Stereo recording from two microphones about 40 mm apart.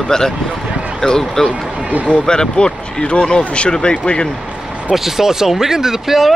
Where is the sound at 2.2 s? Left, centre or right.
Centre.